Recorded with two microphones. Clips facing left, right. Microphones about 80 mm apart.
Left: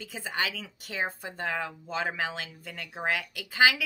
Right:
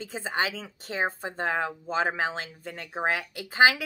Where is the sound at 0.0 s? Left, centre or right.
Right.